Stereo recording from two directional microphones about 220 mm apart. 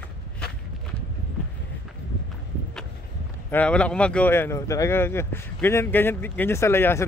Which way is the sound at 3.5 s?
5° left (ahead or behind).